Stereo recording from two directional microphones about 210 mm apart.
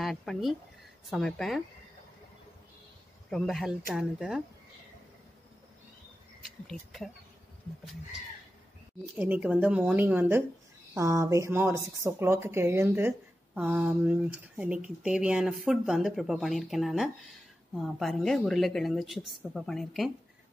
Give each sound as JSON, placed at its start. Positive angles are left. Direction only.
{"t": 0.0, "sound": "a woman's voice", "side_deg": 0}
{"t": 3.3, "sound": "a woman's voice", "side_deg": 0}
{"t": 6.7, "sound": "a woman's voice", "side_deg": 0}
{"t": 9.1, "sound": "a woman's voice", "side_deg": -10}